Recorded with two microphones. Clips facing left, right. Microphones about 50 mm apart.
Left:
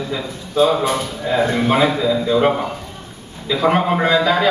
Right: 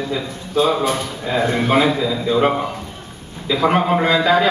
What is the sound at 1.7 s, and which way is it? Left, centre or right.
A man's voice, centre.